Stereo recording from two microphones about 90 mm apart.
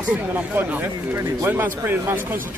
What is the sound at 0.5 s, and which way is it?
Speech, 20° right (ahead or behind).